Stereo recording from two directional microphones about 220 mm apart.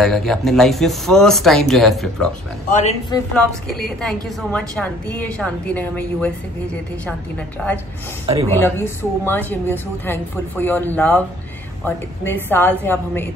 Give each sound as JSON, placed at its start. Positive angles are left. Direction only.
{"t": 0.0, "sound": "a woman's voice", "side_deg": 0}
{"t": 2.7, "sound": "a man's voice", "side_deg": 30}
{"t": 3.3, "sound": "a woman's voice", "side_deg": 0}
{"t": 8.5, "sound": "a woman's voice", "side_deg": 10}